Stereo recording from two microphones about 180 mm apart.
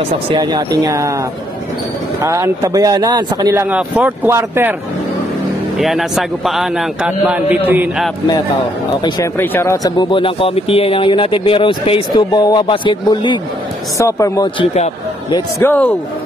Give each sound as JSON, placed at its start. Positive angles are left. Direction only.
{"t": 0.3, "sound": "speech", "side_deg": -25}
{"t": 2.2, "sound": "speech", "side_deg": -15}
{"t": 3.7, "sound": "speech", "side_deg": -5}
{"t": 5.8, "sound": "a man's voice", "side_deg": 0}
{"t": 9.4, "sound": "speech", "side_deg": 10}
{"t": 15.6, "sound": "speech", "side_deg": 10}